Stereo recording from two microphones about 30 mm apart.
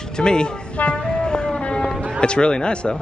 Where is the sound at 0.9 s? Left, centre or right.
Left.